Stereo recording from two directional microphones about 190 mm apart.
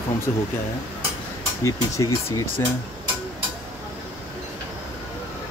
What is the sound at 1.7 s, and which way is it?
Speech, 15° left (ahead or behind).